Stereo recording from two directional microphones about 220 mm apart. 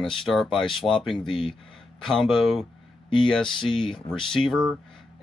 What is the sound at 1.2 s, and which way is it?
Speech, 20° left (ahead or behind).